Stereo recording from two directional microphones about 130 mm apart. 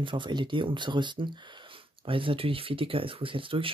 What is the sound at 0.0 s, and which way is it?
Speech, 40° right (ahead or behind).